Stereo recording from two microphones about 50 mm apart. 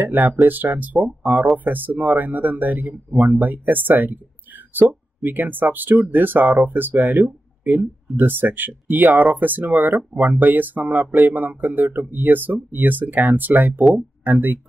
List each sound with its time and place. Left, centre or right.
0.0 s speech: right